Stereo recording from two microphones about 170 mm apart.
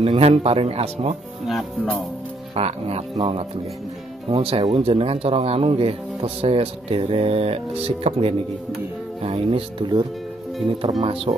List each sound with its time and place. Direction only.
0.0 s speech: 35° right (ahead or behind)
2.5 s speech: 40° right (ahead or behind)